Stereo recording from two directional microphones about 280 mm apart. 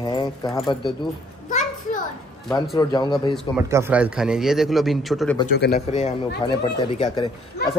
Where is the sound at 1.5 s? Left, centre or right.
Left.